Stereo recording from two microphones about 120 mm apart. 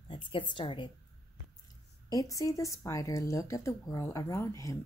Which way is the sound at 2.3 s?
30° left (ahead or behind).